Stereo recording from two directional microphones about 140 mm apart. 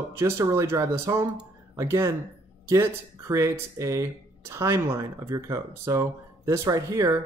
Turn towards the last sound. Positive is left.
turn(degrees=-25)  # may be behind; listen again after turning